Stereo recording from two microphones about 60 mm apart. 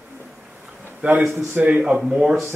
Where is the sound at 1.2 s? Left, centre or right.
Right.